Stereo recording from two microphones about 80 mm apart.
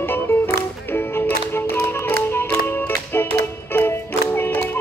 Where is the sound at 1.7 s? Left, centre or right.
Left.